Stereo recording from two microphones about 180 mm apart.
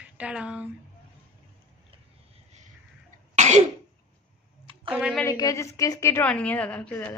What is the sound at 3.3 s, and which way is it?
Cough, 40° right (ahead or behind).